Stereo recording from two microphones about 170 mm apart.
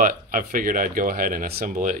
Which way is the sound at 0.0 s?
50° right (ahead or behind).